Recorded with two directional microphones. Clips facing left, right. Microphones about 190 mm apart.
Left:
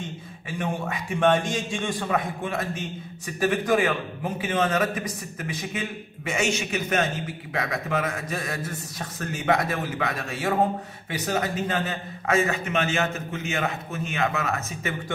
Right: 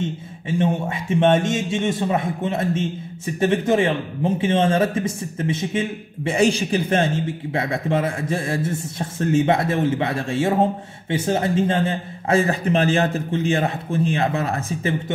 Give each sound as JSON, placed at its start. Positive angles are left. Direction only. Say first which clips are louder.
{"t": 0.0, "sound": "speech", "louder": "right 9 dB", "side_deg": -25}